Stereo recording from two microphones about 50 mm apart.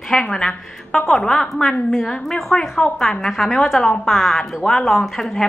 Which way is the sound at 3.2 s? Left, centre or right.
Centre.